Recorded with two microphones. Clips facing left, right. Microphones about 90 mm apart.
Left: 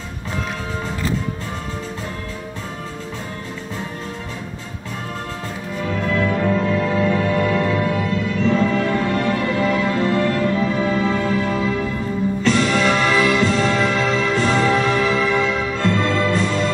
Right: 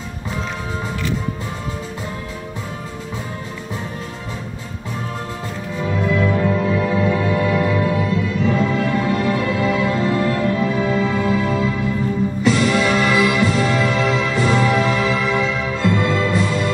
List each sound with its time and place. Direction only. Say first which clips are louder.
5.9 s music: right 2 dB; 15° right (ahead or behind)